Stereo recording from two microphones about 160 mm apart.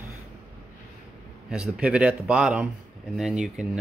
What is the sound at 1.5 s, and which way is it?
A man's voice, 5° right (ahead or behind).